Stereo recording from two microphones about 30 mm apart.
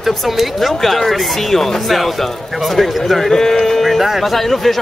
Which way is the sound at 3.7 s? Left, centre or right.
Centre.